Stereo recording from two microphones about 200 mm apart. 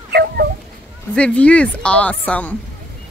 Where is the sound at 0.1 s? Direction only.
50° right (ahead or behind).